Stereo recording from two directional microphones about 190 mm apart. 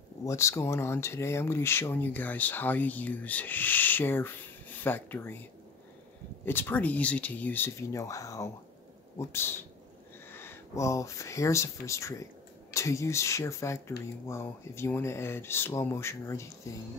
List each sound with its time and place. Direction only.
0.2 s speech: 15° left (ahead or behind)